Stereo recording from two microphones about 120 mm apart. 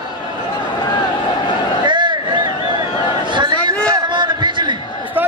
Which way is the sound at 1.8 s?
40° right (ahead or behind).